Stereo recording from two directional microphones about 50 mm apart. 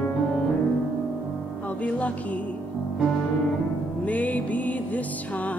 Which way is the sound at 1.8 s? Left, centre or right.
Left.